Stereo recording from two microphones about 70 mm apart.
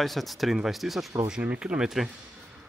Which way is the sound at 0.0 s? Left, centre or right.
Centre.